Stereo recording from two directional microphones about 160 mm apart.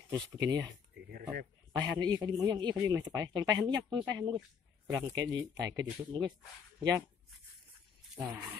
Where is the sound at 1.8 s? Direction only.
25° right (ahead or behind).